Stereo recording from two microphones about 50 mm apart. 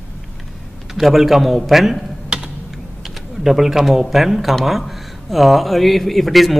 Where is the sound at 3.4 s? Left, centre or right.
Centre.